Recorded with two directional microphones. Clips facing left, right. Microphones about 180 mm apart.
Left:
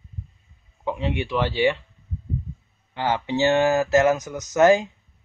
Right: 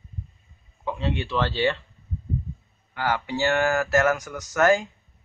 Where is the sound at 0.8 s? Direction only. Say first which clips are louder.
Left 2 dB; 15° left (ahead or behind).